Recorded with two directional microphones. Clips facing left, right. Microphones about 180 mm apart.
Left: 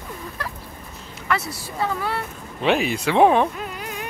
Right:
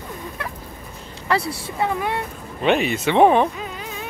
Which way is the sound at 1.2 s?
30° right (ahead or behind).